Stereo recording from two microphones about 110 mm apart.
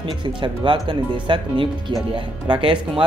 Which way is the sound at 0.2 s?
45° right (ahead or behind).